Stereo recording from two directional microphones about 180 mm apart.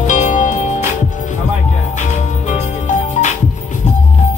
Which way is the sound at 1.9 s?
40° left (ahead or behind).